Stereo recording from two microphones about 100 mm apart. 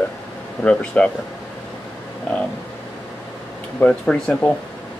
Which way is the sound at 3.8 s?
10° left (ahead or behind).